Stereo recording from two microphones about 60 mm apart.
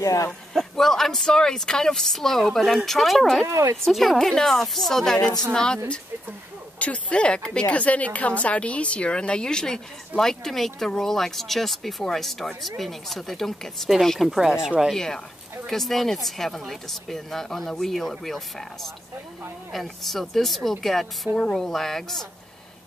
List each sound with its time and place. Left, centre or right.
0.0 s speech: left
0.5 s speech: centre
3.4 s speech: right
3.8 s a woman's voice: centre
6.8 s a woman's voice: left; by 14.3 s centre
14.3 s speech: centre
14.9 s a woman's voice: centre